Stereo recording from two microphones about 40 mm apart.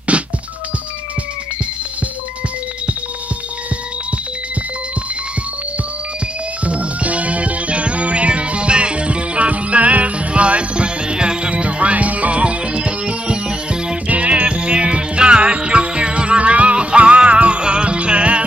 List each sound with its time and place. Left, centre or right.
0.1 s music: right
6.6 s music: right
14.0 s music: right